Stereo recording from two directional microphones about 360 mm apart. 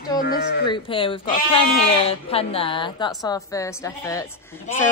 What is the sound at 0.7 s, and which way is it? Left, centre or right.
A woman's voice, centre.